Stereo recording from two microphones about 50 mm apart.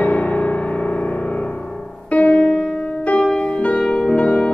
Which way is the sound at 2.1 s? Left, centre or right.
Left.